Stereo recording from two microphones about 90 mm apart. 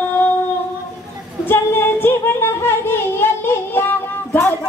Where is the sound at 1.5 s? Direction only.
25° left (ahead or behind).